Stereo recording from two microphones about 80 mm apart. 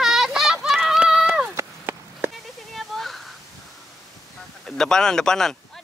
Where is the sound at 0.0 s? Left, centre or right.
Centre.